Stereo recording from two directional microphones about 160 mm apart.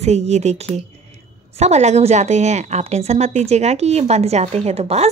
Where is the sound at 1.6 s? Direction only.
45° right (ahead or behind).